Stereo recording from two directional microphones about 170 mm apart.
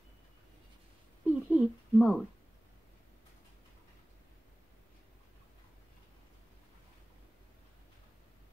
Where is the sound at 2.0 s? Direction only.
5° left (ahead or behind).